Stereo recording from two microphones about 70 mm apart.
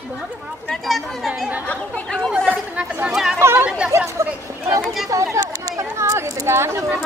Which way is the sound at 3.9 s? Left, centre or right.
Right.